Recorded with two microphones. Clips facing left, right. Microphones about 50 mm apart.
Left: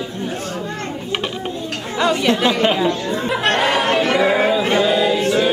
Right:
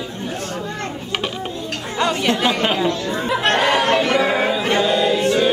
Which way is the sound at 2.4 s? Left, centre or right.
Centre.